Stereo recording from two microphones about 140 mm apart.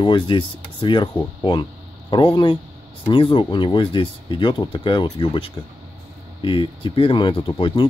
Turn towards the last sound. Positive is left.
turn(degrees=35)  # may be behind; listen again after turning